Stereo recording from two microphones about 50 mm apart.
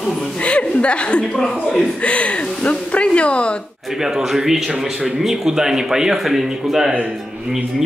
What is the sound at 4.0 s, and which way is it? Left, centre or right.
Speech, centre.